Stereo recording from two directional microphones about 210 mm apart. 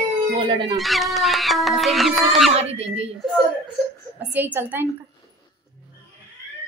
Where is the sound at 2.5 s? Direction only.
30° right (ahead or behind).